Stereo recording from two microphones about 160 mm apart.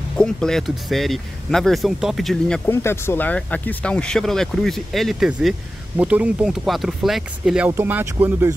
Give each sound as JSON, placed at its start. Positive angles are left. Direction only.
{"t": 0.2, "sound": "speech", "side_deg": 5}
{"t": 2.7, "sound": "speech", "side_deg": 15}